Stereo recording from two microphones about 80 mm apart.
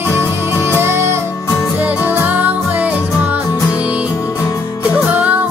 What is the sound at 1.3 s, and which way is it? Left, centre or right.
Music, left.